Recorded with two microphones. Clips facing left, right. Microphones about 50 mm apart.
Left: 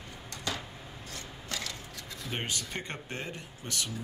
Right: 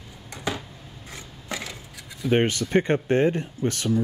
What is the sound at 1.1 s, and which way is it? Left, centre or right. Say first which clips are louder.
Mechanisms: right 5 dB; centre.